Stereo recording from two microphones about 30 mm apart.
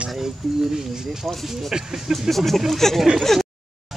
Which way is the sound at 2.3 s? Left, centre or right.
Centre.